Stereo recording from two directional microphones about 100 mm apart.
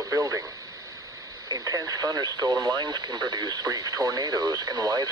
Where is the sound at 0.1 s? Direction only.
30° right (ahead or behind).